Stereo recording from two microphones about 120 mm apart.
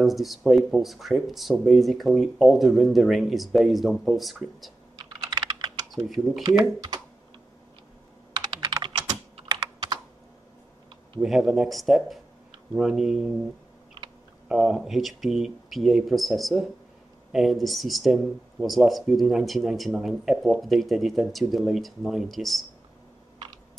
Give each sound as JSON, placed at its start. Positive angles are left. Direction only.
{"t": 0.0, "sound": "speech", "side_deg": 0}
{"t": 4.9, "sound": "computer keyboard", "side_deg": -35}
{"t": 6.0, "sound": "speech", "side_deg": 0}
{"t": 6.6, "sound": "speech", "side_deg": -35}
{"t": 8.4, "sound": "computer keyboard", "side_deg": -30}
{"t": 8.8, "sound": "typing", "side_deg": -40}
{"t": 11.1, "sound": "speech", "side_deg": 0}
{"t": 14.5, "sound": "speech", "side_deg": 0}